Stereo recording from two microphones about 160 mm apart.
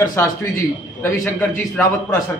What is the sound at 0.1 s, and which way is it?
A man's voice, 15° left (ahead or behind).